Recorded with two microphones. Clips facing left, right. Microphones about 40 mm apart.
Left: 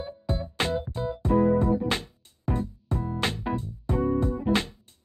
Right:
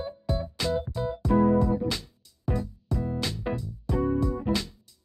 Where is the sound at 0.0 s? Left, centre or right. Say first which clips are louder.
Right 1 dB; left.